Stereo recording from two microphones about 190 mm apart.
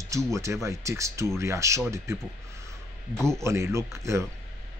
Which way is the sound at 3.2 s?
15° right (ahead or behind).